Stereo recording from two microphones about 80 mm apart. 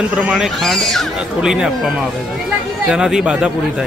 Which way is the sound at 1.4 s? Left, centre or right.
Centre.